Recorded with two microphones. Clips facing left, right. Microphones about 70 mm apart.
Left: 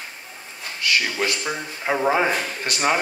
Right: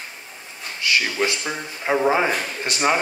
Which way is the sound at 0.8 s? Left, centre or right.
Right.